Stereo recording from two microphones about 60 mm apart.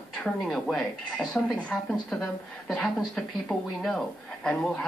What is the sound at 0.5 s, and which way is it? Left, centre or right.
Speech, centre.